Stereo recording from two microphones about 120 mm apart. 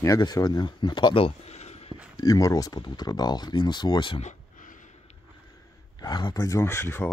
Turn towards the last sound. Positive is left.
turn(degrees=20)  # may be behind; listen again after turning